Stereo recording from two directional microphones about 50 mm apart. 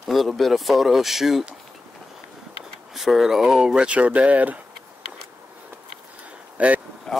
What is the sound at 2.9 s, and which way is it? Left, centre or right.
Speech, centre.